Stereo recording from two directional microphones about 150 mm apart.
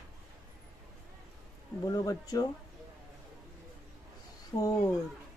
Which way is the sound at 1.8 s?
25° left (ahead or behind).